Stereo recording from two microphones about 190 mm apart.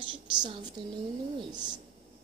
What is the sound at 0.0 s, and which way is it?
A woman's voice, 25° right (ahead or behind).